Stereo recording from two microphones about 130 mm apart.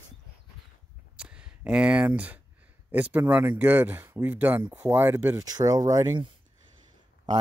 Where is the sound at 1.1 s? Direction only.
5° right (ahead or behind).